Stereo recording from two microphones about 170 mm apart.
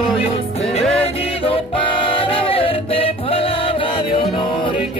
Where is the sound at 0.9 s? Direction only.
35° left (ahead or behind).